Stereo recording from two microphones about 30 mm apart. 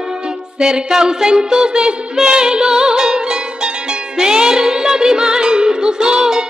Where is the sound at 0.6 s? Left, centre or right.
Right.